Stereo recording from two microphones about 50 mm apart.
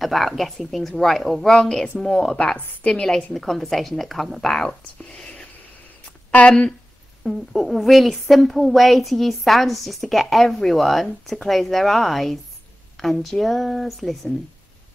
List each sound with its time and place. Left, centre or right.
0.0 s a woman's voice: centre
2.3 s a woman's voice: left
3.3 s a woman's voice: centre
7.2 s a woman's voice: centre